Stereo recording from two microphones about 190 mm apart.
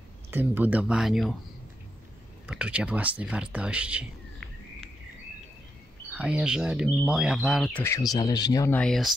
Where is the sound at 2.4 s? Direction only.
5° right (ahead or behind).